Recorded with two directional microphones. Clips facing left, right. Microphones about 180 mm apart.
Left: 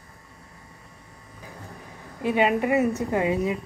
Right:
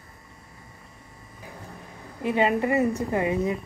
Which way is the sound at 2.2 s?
20° left (ahead or behind).